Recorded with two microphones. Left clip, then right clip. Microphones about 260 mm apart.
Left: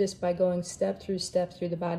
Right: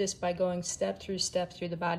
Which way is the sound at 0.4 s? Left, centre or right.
Centre.